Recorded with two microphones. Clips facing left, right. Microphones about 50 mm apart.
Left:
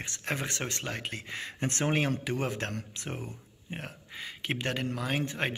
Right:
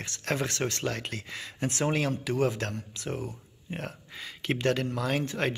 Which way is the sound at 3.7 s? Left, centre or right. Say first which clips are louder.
Right 3 dB; centre.